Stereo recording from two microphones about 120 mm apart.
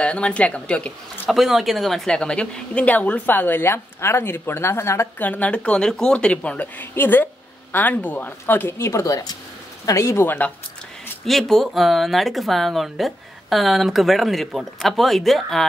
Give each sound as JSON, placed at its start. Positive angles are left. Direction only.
{"t": 0.0, "sound": "a woman's voice", "side_deg": 10}
{"t": 1.3, "sound": "a woman's voice", "side_deg": 0}
{"t": 11.2, "sound": "speech", "side_deg": 0}